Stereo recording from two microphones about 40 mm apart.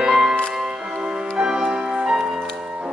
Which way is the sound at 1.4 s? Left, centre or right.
Centre.